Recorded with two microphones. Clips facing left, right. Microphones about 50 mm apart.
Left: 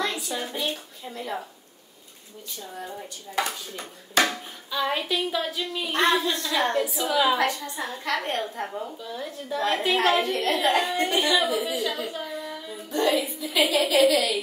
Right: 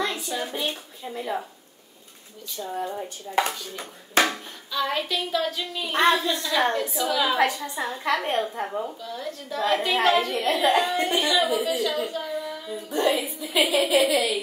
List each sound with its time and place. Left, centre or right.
0.3 s a sound: centre
0.6 s speech: centre
2.6 s speech: right
4.6 s a woman's voice: centre
5.9 s speech: centre
7.3 s a woman's voice: centre
9.0 s speech: centre
10.3 s a woman's voice: centre
10.9 s speech: centre
13.0 s a woman's voice: centre